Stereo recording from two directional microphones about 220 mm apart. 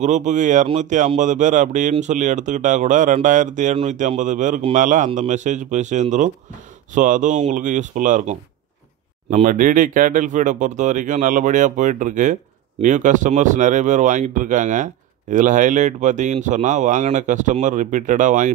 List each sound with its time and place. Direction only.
0.0 s speech: 35° right (ahead or behind)